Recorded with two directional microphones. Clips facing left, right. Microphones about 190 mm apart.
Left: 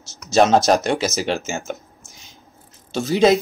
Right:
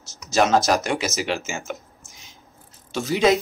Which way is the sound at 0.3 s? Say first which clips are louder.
Left 4 dB; 30° left (ahead or behind).